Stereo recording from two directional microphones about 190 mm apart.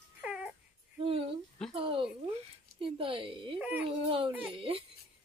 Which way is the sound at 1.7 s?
25° right (ahead or behind).